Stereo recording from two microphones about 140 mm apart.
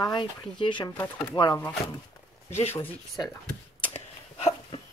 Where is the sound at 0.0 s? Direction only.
30° left (ahead or behind).